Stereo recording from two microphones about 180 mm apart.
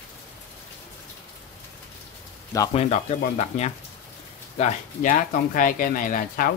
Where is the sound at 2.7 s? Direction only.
35° left (ahead or behind).